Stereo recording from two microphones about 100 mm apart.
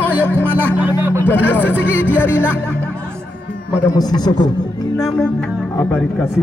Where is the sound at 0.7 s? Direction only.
20° right (ahead or behind).